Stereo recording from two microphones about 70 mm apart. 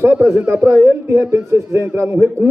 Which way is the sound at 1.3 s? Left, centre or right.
Right.